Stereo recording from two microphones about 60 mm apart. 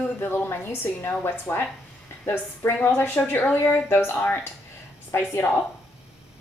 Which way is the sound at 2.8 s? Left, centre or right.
Left.